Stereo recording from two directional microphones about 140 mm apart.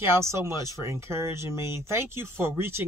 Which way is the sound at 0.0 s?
20° right (ahead or behind).